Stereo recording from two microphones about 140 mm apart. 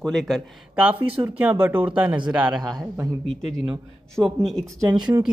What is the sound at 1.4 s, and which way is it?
Speech, 15° right (ahead or behind).